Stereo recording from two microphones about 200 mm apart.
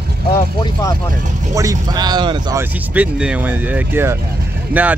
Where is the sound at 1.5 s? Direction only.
20° right (ahead or behind).